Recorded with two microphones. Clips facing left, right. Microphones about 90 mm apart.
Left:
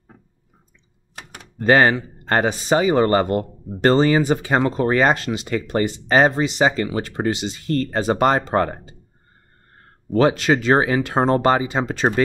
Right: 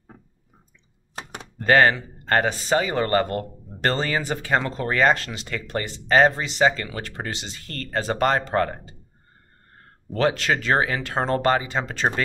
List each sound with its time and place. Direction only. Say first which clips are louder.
1.1 s door: right 4 dB; 25° right (ahead or behind)
1.6 s speech: left 2 dB; 15° left (ahead or behind)
10.1 s speech: left 5 dB; 15° left (ahead or behind)